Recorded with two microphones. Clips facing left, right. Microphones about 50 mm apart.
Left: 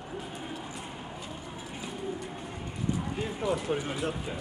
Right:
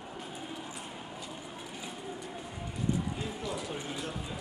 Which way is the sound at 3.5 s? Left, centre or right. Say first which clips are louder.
Left 7 dB; left.